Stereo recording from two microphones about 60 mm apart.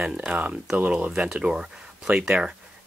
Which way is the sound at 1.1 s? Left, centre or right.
Centre.